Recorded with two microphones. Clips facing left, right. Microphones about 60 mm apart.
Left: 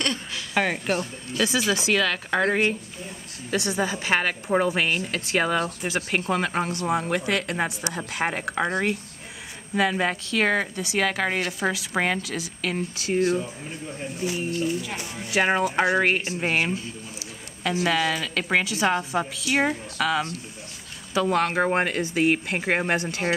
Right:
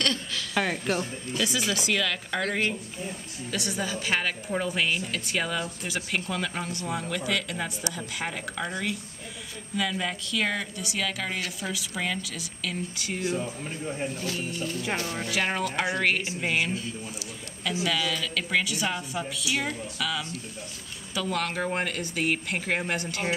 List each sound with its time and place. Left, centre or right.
0.0 s a woman's voice: left
2.0 s a woman's voice: left
2.4 s a woman's voice: left
11.4 s a woman's voice: left
12.6 s a woman's voice: left
14.2 s speech: left
15.2 s a woman's voice: left
17.8 s a woman's voice: left